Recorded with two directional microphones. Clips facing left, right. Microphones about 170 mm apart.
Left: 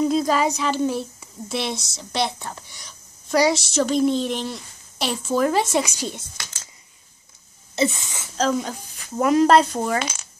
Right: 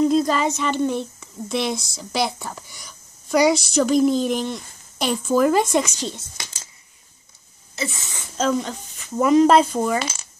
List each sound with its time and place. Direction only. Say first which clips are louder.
0.0 s speech: right 1 dB; 5° left (ahead or behind)
7.7 s speech: left 7 dB; 20° left (ahead or behind)
8.5 s speech: right 1 dB; 5° left (ahead or behind)